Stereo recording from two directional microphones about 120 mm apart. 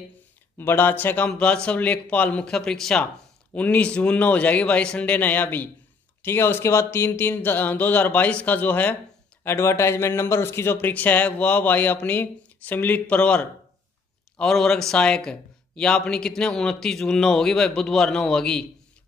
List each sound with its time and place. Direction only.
0.6 s a man's voice: 15° left (ahead or behind)